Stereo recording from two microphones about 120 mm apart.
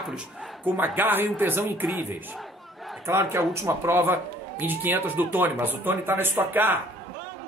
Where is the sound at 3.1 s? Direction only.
20° right (ahead or behind).